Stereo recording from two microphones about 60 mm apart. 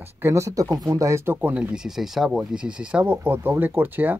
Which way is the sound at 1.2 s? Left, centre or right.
Right.